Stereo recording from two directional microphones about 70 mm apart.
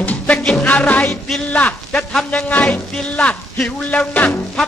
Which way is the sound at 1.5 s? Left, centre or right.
Left.